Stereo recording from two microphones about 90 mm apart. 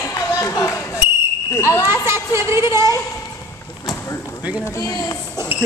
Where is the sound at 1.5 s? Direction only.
30° left (ahead or behind).